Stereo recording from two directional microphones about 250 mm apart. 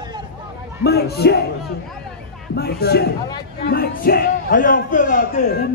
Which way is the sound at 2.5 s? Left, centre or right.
Left.